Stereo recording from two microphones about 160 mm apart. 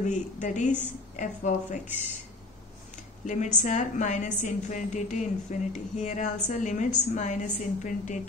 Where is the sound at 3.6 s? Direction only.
50° left (ahead or behind).